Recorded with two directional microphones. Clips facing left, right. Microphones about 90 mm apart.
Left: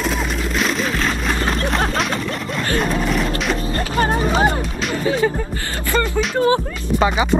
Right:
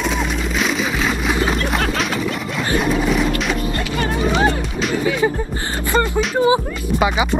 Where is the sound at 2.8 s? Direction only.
Centre (ahead or behind).